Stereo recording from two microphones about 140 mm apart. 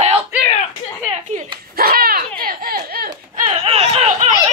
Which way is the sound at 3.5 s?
45° right (ahead or behind).